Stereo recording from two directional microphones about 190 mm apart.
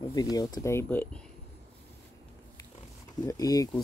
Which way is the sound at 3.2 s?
20° left (ahead or behind).